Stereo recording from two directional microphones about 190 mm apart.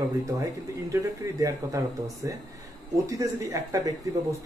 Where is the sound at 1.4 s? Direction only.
15° right (ahead or behind).